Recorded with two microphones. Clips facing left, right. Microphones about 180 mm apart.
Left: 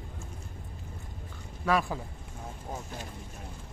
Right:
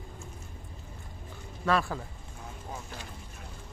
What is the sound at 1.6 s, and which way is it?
Speech, 10° left (ahead or behind).